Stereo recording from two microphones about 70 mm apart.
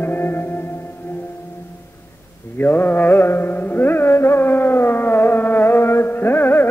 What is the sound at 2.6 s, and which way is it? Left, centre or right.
Music, left.